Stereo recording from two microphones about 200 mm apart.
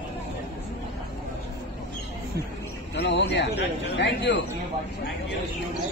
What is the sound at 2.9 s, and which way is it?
A man's voice, 65° left (ahead or behind).